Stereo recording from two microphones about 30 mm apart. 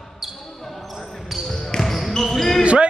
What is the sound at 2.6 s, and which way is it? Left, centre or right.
Basketball bounce, right.